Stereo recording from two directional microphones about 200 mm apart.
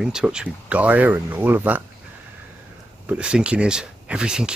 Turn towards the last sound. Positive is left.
turn(degrees=-5)  # may be behind; listen again after turning